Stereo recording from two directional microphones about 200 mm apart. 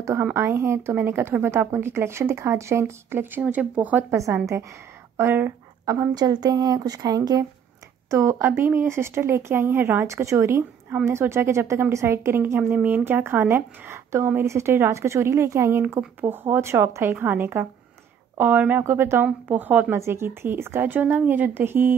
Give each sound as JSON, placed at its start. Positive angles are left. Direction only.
{"t": 0.0, "sound": "speech", "side_deg": -10}